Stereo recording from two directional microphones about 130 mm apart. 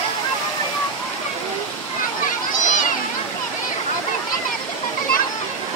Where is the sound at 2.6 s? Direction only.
80° left.